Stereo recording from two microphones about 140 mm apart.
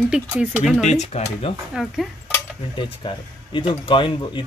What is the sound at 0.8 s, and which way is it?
Speech, 55° left (ahead or behind).